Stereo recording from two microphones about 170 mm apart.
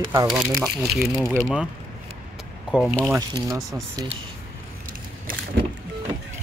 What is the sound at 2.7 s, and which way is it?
Speech, 5° right (ahead or behind).